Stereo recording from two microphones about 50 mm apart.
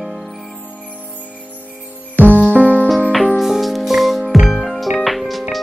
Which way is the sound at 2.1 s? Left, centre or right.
Left.